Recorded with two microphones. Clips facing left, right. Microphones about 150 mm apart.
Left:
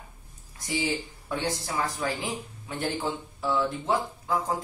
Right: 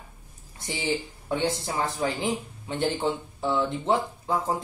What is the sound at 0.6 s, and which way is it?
Speech, 25° right (ahead or behind).